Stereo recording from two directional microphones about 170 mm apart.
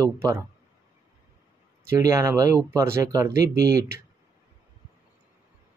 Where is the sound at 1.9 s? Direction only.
20° right (ahead or behind).